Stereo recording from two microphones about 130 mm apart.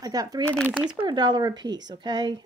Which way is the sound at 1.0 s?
35° right (ahead or behind).